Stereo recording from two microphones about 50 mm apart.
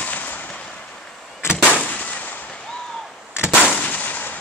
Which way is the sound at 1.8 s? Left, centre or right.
Left.